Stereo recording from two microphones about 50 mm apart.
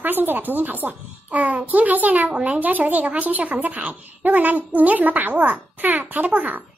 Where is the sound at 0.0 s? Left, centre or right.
Right.